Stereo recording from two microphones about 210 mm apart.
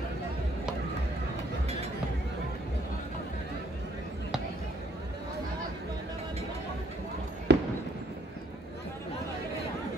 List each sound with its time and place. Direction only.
7.5 s fireworks: 55° right (ahead or behind)